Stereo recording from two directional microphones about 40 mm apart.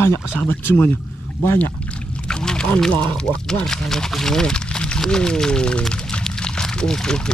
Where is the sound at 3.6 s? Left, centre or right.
Centre.